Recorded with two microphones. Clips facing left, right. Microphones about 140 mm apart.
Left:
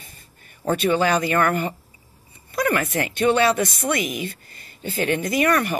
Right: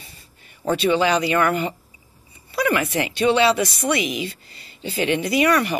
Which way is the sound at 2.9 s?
15° right (ahead or behind).